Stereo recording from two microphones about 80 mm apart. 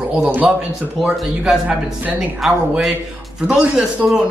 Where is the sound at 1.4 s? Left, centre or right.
Centre.